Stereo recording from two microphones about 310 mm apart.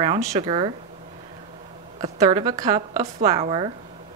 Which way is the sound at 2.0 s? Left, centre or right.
Centre.